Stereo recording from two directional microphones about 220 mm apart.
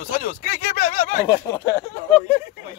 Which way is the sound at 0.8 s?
35° left (ahead or behind).